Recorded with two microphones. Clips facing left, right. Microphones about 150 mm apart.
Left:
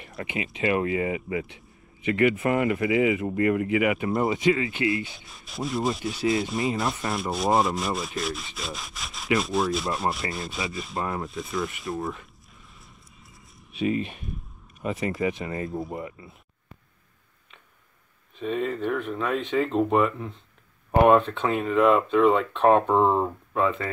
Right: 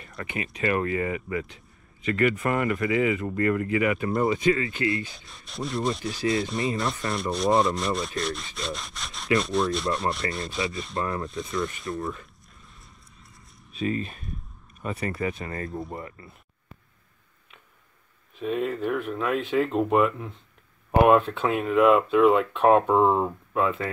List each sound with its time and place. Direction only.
0.2 s speech: 20° left (ahead or behind)
5.3 s speech: centre (ahead or behind)
15.0 s speech: 20° left (ahead or behind)
18.4 s speech: 5° right (ahead or behind)